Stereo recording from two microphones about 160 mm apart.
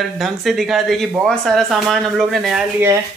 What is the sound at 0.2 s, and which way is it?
Speech, centre (ahead or behind).